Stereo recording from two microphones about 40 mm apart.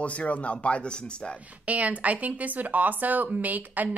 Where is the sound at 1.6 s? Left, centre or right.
Right.